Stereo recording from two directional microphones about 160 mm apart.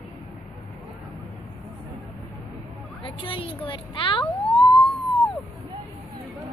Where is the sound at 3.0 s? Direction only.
35° left (ahead or behind).